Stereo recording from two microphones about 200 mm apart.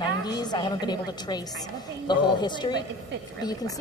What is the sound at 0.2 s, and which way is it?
A woman's voice, 20° left (ahead or behind).